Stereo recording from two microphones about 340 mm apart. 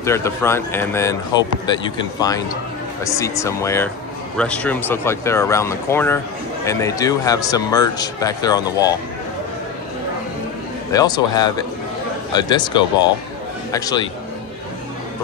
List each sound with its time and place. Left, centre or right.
0.0 s speech: centre
10.9 s speech: centre